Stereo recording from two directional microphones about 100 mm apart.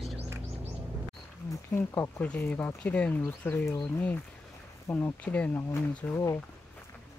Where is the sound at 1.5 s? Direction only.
25° left (ahead or behind).